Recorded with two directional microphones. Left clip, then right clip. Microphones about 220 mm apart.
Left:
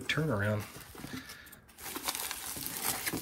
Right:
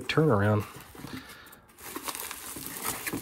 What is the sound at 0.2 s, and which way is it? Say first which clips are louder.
Speech: right 10 dB; 60° left (ahead or behind).